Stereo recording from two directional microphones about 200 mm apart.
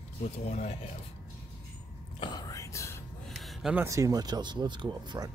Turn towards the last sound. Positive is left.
turn(degrees=-20)  # may be behind; listen again after turning